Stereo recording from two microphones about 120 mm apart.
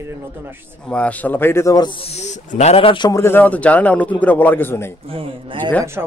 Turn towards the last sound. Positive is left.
turn(degrees=-20)  # may be behind; listen again after turning